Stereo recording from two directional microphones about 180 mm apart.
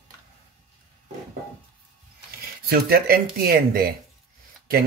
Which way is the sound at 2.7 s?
55° right (ahead or behind).